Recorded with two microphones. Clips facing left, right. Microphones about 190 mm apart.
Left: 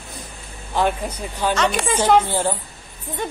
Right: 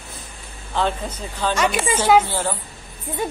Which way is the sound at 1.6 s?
5° right (ahead or behind).